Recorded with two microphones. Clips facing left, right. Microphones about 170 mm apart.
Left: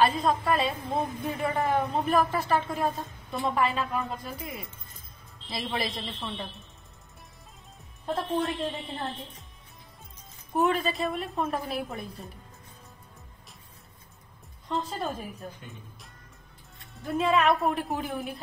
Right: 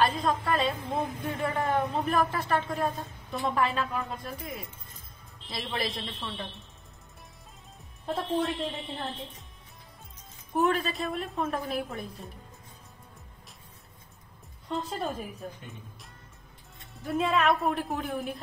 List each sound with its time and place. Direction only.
0.0 s a woman's voice: 5° left (ahead or behind)
8.1 s a woman's voice: centre (ahead or behind)
10.5 s a woman's voice: centre (ahead or behind)
14.7 s a woman's voice: centre (ahead or behind)
17.0 s a woman's voice: centre (ahead or behind)